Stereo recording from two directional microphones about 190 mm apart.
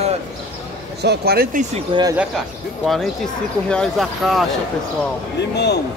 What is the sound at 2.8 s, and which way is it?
Speech, centre (ahead or behind).